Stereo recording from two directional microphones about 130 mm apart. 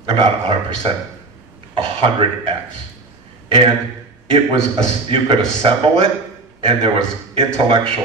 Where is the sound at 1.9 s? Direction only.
45° right (ahead or behind).